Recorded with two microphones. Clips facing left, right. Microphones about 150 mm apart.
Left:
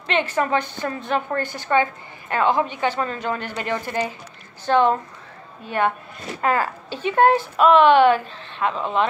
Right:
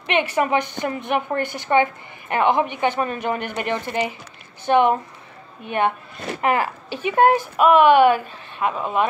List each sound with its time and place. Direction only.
0.0 s a woman's voice: 15° right (ahead or behind)